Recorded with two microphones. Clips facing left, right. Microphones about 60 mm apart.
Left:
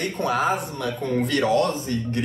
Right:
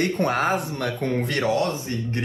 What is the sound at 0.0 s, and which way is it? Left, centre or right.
Speech, right.